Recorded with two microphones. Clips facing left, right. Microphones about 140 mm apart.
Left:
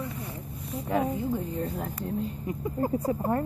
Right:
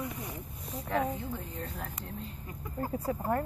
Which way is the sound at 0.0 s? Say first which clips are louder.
Left 2 dB; 15° right (ahead or behind).